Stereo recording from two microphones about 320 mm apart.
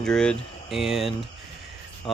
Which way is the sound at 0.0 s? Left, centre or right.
Centre.